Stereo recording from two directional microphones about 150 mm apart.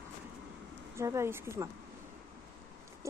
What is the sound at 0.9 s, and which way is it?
Speech, 20° right (ahead or behind).